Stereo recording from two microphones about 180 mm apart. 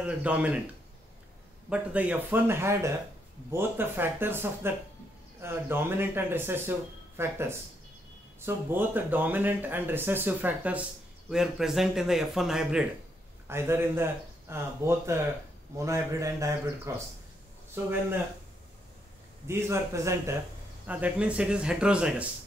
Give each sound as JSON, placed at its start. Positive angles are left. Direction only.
{"t": 0.0, "sound": "speech", "side_deg": -5}
{"t": 1.7, "sound": "speech", "side_deg": -5}
{"t": 13.5, "sound": "speech", "side_deg": -15}
{"t": 19.4, "sound": "speech", "side_deg": -15}